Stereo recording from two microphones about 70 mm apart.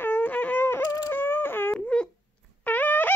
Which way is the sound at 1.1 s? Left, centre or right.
Left.